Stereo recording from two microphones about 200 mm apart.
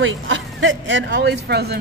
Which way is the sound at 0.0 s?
75° right (ahead or behind).